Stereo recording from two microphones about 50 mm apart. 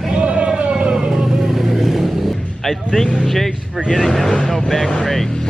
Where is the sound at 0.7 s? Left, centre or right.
Centre.